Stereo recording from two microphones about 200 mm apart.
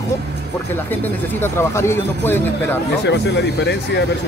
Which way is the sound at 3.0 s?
60° left (ahead or behind).